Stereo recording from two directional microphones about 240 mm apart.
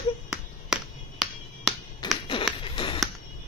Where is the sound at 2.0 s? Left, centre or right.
Centre.